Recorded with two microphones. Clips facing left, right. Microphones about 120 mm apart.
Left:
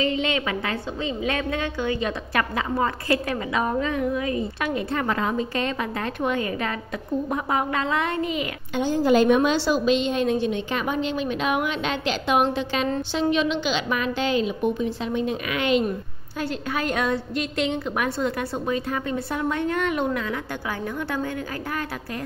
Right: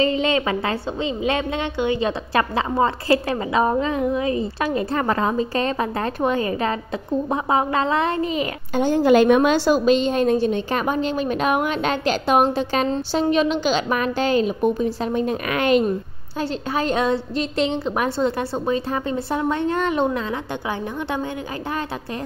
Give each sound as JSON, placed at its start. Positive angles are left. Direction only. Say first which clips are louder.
{"t": 0.0, "sound": "a woman's voice", "louder": "right 4 dB", "side_deg": -35}
{"t": 8.8, "sound": "a woman's voice", "louder": "right 4 dB", "side_deg": -65}
{"t": 16.3, "sound": "a woman's voice", "louder": "right 3 dB", "side_deg": -30}